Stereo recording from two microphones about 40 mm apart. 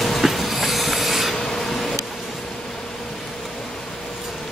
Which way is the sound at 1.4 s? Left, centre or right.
Centre.